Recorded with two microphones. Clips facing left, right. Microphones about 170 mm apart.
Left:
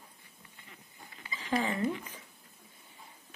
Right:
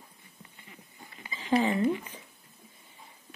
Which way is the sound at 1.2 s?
15° right (ahead or behind).